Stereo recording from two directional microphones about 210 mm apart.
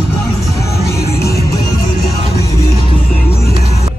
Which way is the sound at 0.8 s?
50° left (ahead or behind).